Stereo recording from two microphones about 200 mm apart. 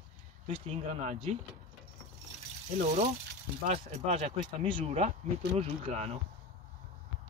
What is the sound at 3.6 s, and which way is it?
Speech, 30° right (ahead or behind).